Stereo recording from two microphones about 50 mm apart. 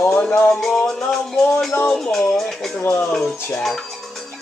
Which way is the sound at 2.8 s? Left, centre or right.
Left.